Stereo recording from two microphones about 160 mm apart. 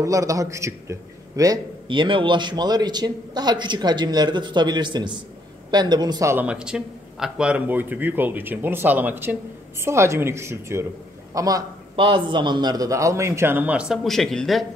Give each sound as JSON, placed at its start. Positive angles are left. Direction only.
{"t": 0.0, "sound": "a man's voice", "side_deg": -20}
{"t": 6.3, "sound": "a man's voice", "side_deg": -5}
{"t": 11.9, "sound": "a man's voice", "side_deg": -30}